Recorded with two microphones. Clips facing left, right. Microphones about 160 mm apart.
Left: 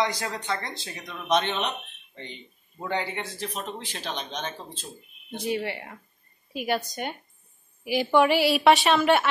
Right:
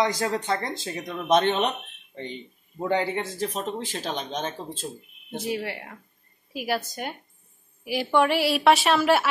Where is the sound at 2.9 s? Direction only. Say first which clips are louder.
Right 4 dB; 45° right (ahead or behind).